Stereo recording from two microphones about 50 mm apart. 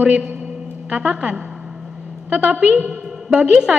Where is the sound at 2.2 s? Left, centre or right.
Right.